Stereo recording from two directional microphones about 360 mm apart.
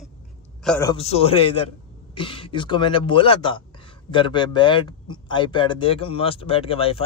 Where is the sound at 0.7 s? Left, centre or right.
Centre.